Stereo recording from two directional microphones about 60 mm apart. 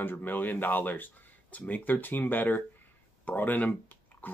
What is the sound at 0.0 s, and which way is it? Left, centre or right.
Speech, left.